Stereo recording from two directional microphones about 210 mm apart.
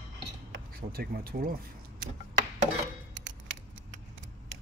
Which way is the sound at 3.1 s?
60° right (ahead or behind).